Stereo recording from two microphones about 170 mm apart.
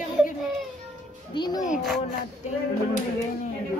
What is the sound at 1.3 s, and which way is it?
Speech, 25° left (ahead or behind).